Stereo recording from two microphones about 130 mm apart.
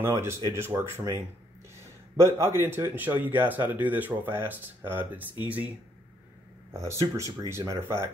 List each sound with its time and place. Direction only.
0.0 s speech: 20° right (ahead or behind)
6.7 s speech: 25° right (ahead or behind)